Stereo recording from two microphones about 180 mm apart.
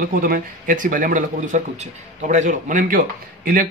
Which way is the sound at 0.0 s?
50° right (ahead or behind).